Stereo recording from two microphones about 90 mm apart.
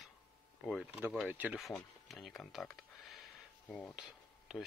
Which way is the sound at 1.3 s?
20° right (ahead or behind).